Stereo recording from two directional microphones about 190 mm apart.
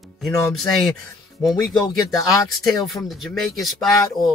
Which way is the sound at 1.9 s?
20° left (ahead or behind).